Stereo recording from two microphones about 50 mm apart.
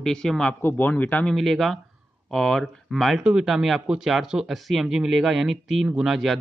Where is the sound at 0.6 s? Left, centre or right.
Left.